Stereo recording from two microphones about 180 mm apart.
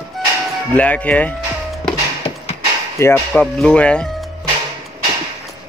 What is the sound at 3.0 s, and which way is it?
Speech, 15° left (ahead or behind).